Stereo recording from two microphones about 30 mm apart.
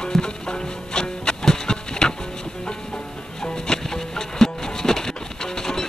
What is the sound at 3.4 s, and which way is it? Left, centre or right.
Music, left.